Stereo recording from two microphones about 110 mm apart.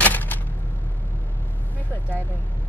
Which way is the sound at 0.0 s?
15° left (ahead or behind).